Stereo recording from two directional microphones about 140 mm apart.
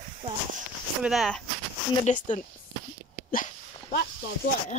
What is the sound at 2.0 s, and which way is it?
Speech, 60° left (ahead or behind).